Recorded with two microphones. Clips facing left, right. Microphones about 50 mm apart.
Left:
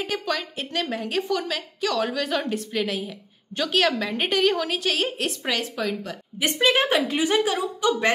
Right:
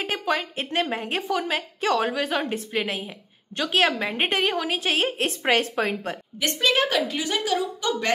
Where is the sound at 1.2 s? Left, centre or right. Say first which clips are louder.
Left 2 dB; centre.